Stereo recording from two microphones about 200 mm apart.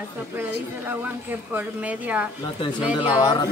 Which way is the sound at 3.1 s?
20° left (ahead or behind).